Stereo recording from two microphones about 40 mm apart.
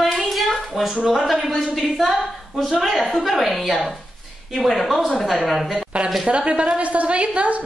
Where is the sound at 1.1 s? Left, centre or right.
Centre.